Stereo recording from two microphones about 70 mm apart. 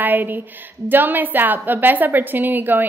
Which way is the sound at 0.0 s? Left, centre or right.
Right.